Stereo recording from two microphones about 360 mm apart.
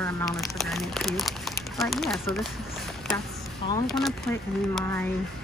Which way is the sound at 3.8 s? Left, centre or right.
Centre.